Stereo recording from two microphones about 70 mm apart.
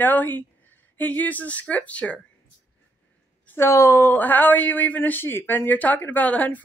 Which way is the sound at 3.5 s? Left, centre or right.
Left.